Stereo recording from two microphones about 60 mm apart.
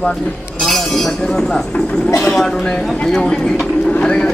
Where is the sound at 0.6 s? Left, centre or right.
Centre.